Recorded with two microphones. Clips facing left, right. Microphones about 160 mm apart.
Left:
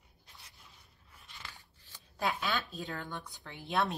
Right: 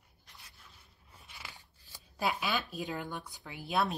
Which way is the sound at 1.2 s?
15° right (ahead or behind).